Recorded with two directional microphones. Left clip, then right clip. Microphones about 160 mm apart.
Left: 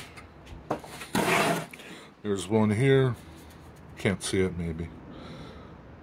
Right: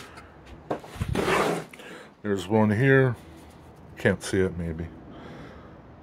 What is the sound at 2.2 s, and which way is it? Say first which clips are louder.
Speech: right 3 dB; 15° right (ahead or behind).